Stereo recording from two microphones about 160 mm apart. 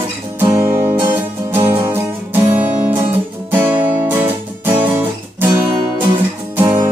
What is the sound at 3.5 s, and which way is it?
Guitar, 10° right (ahead or behind).